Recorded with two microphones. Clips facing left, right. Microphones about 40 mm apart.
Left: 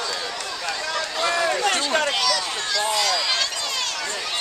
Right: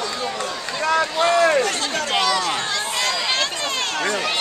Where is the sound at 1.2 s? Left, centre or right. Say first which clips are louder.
Right 4 dB; right.